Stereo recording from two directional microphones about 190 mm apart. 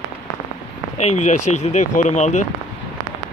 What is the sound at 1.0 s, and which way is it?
Speech, 35° left (ahead or behind).